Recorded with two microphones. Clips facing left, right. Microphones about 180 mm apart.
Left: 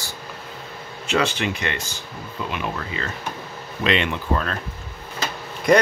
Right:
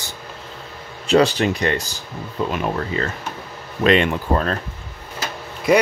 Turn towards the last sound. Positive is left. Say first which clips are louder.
# right 1 dB
turn(degrees=-5)  # may be behind; listen again after turning